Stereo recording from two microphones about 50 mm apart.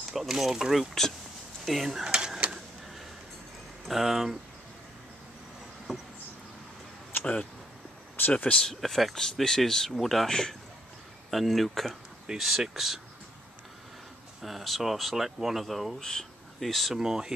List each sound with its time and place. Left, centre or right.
0.1 s mechanisms: centre
1.7 s speech: centre
3.8 s speech: centre
5.9 s insect: centre
8.3 s speech: left
8.5 s speech: centre
14.4 s speech: centre
16.0 s speech: centre
16.9 s mechanisms: centre